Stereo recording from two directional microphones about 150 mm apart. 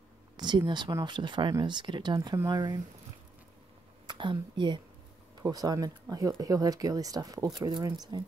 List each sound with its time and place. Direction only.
0.4 s speech: 30° right (ahead or behind)
4.1 s speech: 30° right (ahead or behind)